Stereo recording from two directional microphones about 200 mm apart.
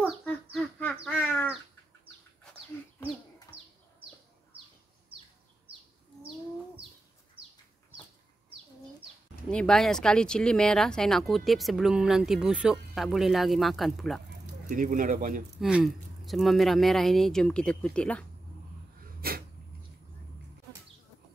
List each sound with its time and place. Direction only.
0.2 s bird: 5° left (ahead or behind)
9.5 s speech: 5° left (ahead or behind)
14.7 s speech: 45° right (ahead or behind)
15.6 s speech: centre (ahead or behind)
19.2 s a sound: 50° right (ahead or behind)